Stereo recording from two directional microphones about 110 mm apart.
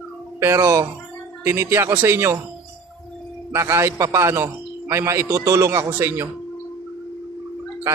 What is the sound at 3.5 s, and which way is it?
A man's voice, 25° right (ahead or behind).